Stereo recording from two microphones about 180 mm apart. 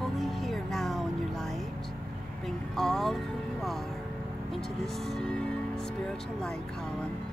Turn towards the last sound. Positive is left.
turn(degrees=5)  # may be behind; listen again after turning